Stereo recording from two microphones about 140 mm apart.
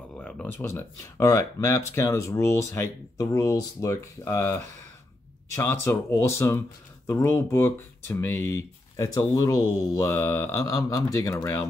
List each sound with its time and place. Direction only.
0.1 s speech: 5° left (ahead or behind); by 11.6 s 25° left (ahead or behind)